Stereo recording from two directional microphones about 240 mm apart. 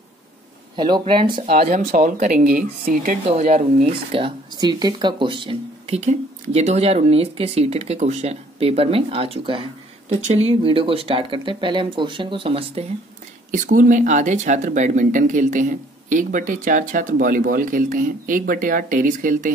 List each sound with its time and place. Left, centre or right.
0.7 s speech: centre
13.5 s speech: right